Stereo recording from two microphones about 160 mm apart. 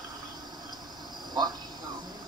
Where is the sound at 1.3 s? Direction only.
25° right (ahead or behind).